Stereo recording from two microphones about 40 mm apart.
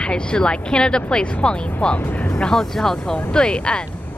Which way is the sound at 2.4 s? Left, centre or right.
Centre.